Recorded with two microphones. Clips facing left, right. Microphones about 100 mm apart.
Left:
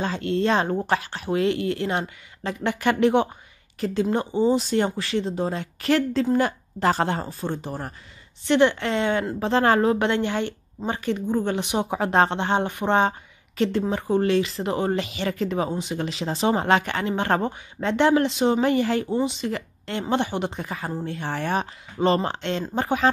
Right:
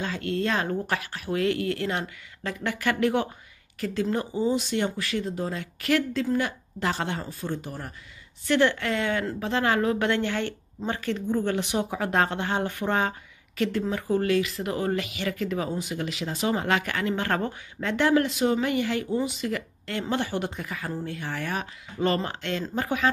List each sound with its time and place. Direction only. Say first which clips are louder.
0.0 s a woman's voice: left 4 dB; 25° left (ahead or behind)
8.5 s speech: left 3 dB; 20° left (ahead or behind)
9.9 s speech: left 3 dB; 20° left (ahead or behind)